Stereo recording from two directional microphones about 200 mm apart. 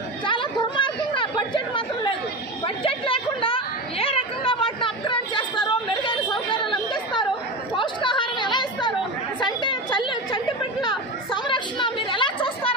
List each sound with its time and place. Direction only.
0.3 s chatter: 25° left (ahead or behind)
2.6 s chatter: 25° left (ahead or behind)
11.4 s a sound: 25° left (ahead or behind)